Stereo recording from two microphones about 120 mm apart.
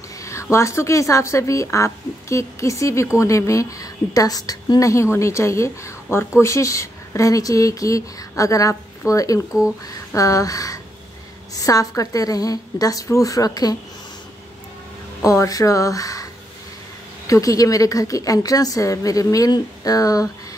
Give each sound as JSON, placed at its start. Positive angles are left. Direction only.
{"t": 0.2, "sound": "speech", "side_deg": 25}
{"t": 15.2, "sound": "speech", "side_deg": 25}
{"t": 17.3, "sound": "speech", "side_deg": 30}